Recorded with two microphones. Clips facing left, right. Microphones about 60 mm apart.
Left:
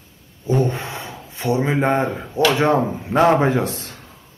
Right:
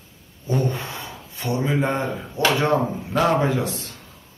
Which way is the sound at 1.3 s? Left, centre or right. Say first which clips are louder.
Left 3 dB; left.